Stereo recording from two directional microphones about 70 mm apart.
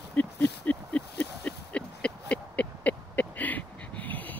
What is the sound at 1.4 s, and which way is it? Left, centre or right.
Owl, centre.